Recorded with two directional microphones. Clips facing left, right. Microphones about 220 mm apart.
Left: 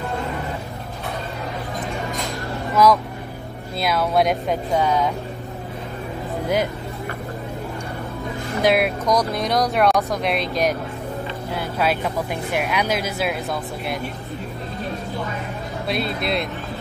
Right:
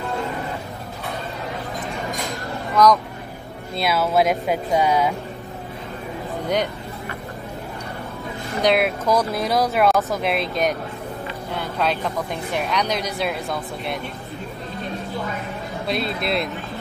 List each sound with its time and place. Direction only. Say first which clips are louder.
2.7 s speech: even; 5° left (ahead or behind); by 5.1 s 10° right (ahead or behind)
8.6 s speech: even; centre (ahead or behind)
15.9 s speech: even; centre (ahead or behind)